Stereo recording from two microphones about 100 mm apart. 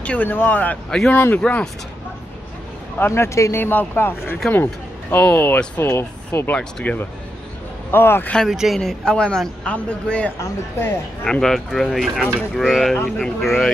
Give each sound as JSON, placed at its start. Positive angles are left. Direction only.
{"t": 0.0, "sound": "a man's voice", "side_deg": 15}
{"t": 0.8, "sound": "speech", "side_deg": 5}
{"t": 1.1, "sound": "a man's voice", "side_deg": 15}
{"t": 3.0, "sound": "a man's voice", "side_deg": 25}
{"t": 8.4, "sound": "a man's voice", "side_deg": -5}